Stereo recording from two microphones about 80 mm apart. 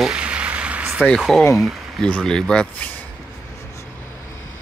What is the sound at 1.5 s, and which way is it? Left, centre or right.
Speech, centre.